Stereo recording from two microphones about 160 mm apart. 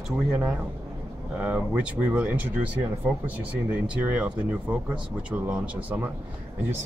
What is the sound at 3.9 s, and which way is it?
Speech, 10° right (ahead or behind).